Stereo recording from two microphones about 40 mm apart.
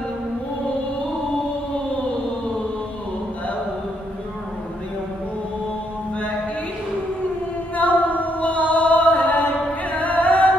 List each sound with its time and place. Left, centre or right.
7.7 s music: left